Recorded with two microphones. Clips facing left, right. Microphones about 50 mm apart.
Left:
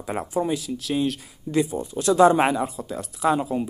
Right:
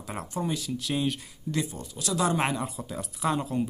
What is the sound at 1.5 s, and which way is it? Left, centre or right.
Speech, left.